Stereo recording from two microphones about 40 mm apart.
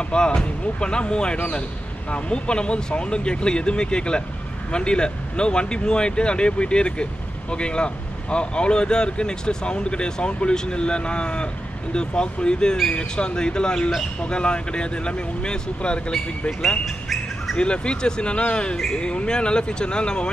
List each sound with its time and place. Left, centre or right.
0.1 s speech: left
16.1 s speech: centre
16.8 s bird: centre
17.6 s speech: left